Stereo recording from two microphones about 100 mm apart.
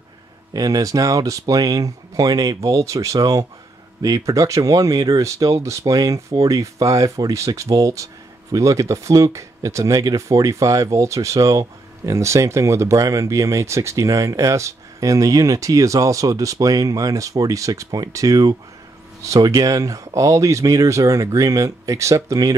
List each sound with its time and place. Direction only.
0.5 s speech: 40° right (ahead or behind)